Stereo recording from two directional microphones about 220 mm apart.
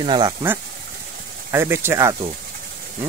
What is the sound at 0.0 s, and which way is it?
Speech, 20° right (ahead or behind).